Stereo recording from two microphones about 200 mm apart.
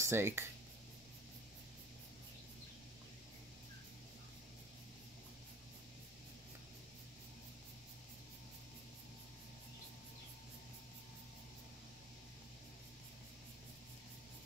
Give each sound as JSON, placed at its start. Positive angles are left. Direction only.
{"t": 0.0, "sound": "speech", "side_deg": -15}